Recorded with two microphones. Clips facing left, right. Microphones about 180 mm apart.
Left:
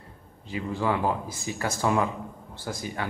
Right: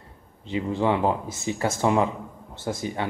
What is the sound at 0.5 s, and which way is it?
Speech, 25° right (ahead or behind).